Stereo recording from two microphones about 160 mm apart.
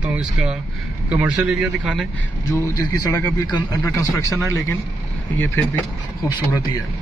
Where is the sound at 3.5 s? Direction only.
20° left (ahead or behind).